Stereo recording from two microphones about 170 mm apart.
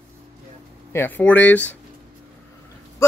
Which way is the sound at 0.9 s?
10° left (ahead or behind).